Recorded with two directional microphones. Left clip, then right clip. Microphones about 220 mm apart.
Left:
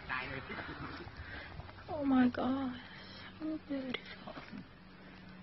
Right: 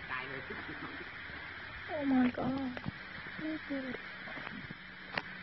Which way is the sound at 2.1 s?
Centre (ahead or behind).